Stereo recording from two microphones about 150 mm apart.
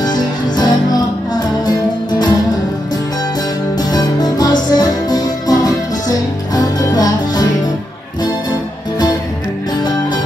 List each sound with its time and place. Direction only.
0.0 s music: 25° left (ahead or behind)
3.9 s music: 25° left (ahead or behind)